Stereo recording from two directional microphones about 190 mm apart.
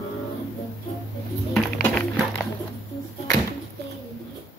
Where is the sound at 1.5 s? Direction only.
5° left (ahead or behind).